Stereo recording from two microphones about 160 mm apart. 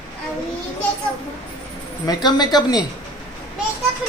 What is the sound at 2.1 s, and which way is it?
Speech, 25° left (ahead or behind).